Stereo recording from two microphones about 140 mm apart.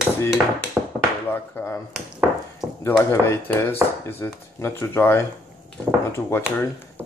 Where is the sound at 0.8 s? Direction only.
5° right (ahead or behind).